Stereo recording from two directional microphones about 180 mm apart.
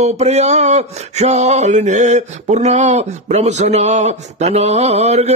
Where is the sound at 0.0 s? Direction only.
40° right (ahead or behind).